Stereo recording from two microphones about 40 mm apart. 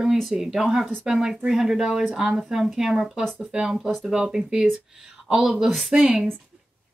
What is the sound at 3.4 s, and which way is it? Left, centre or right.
A woman's voice, right.